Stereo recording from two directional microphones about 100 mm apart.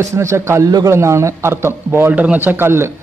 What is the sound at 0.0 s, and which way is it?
A man's voice, 30° right (ahead or behind).